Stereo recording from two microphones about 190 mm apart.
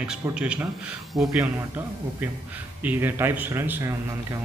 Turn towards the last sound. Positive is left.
turn(degrees=-10)  # may be behind; listen again after turning